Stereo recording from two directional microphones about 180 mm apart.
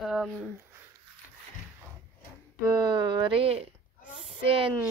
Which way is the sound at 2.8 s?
25° right (ahead or behind).